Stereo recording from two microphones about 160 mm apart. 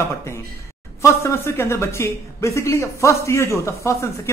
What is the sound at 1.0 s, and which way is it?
A man's voice, 15° left (ahead or behind).